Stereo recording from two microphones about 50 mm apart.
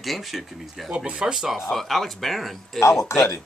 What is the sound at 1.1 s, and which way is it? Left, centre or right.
Speech, right.